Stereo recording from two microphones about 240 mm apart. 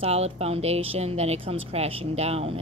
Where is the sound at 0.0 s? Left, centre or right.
Right.